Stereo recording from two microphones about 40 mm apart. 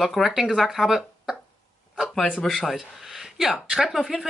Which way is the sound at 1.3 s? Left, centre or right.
Right.